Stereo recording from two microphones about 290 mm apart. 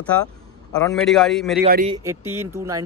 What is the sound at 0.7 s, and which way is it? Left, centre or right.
Speech, centre.